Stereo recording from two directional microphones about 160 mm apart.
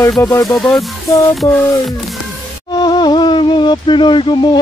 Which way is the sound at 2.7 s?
25° left (ahead or behind).